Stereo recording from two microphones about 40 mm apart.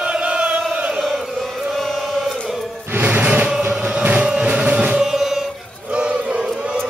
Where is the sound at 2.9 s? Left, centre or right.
Right.